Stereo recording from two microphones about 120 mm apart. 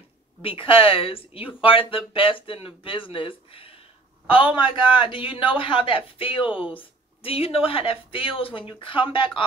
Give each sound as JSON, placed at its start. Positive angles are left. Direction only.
{"t": 0.4, "sound": "speech", "side_deg": 50}